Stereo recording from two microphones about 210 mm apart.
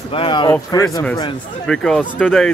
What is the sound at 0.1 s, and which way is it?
Speech, 25° left (ahead or behind).